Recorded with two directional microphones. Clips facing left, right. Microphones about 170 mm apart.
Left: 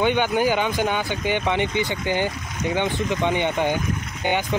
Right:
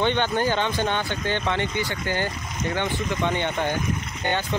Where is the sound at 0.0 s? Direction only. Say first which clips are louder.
Left 3 dB; 10° left (ahead or behind).